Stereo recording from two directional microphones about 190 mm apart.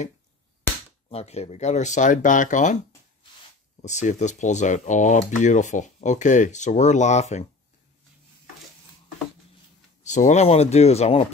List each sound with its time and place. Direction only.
1.1 s speech: 35° left (ahead or behind)
3.8 s speech: 40° left (ahead or behind)
10.0 s speech: 40° left (ahead or behind)